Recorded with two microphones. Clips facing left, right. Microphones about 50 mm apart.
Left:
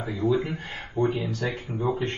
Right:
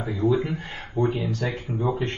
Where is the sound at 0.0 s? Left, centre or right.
Right.